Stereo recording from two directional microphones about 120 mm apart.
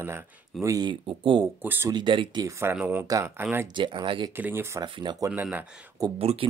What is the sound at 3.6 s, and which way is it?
Speech, 40° right (ahead or behind).